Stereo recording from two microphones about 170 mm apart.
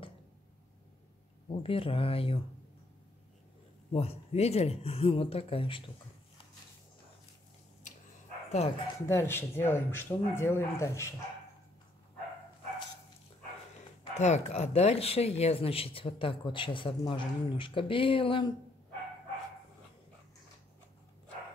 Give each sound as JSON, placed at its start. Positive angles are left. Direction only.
{"t": 1.5, "sound": "speech", "side_deg": 35}
{"t": 3.9, "sound": "speech", "side_deg": 35}
{"t": 8.8, "sound": "speech", "side_deg": 15}
{"t": 14.1, "sound": "speech", "side_deg": 40}